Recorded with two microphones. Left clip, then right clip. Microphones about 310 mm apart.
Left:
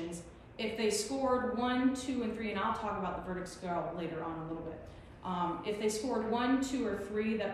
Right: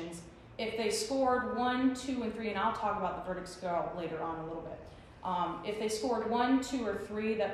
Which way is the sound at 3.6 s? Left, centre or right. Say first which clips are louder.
Right 3 dB; centre.